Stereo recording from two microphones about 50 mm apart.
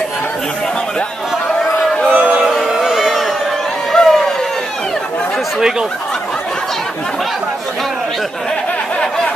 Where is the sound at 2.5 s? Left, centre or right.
Centre.